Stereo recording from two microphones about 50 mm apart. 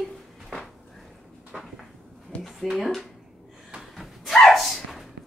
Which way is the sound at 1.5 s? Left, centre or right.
Centre.